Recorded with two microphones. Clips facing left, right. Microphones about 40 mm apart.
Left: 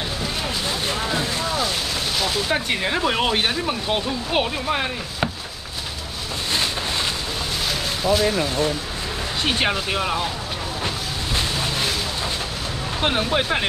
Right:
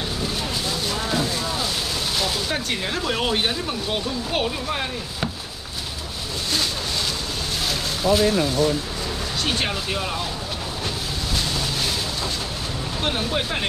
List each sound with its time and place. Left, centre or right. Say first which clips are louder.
2.4 s speech: left 3 dB; centre
7.6 s a sound: right 1 dB; centre
9.4 s speech: left 4 dB; left
11.3 s vehicle: left 2 dB; left
13.0 s speech: left 4 dB; left